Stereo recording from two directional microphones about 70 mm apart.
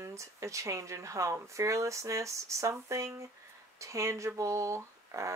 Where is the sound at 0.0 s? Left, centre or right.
Right.